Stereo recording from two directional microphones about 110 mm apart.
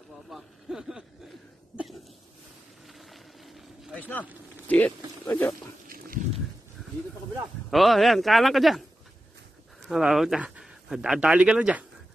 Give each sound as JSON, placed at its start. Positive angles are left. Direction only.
{"t": 0.3, "sound": "speech", "side_deg": -5}
{"t": 2.9, "sound": "a sound", "side_deg": 0}
{"t": 3.9, "sound": "a sound", "side_deg": 15}
{"t": 5.2, "sound": "speech", "side_deg": 20}
{"t": 7.7, "sound": "speech", "side_deg": 0}
{"t": 9.8, "sound": "speech", "side_deg": -5}